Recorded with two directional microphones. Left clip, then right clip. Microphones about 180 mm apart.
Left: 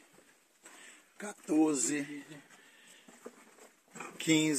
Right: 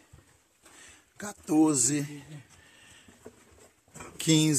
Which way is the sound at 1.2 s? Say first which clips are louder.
Right 5 dB; 30° right (ahead or behind).